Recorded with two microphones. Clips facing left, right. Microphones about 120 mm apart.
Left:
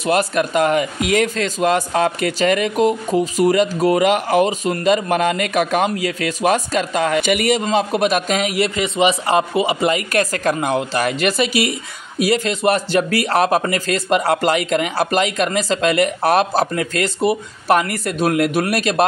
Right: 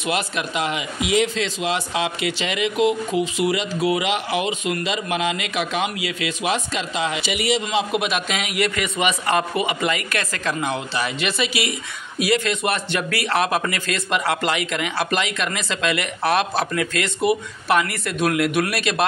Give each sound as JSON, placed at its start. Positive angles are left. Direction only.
{"t": 0.0, "sound": "a man's voice", "side_deg": 45}
{"t": 7.6, "sound": "speech", "side_deg": 40}